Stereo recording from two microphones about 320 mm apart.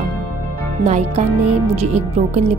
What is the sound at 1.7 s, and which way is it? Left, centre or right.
Speech, centre.